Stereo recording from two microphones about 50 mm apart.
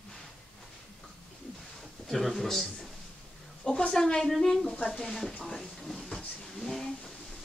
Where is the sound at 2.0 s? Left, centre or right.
Centre.